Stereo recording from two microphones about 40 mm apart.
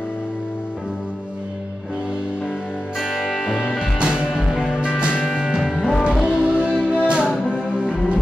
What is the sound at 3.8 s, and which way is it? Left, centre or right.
Music, right.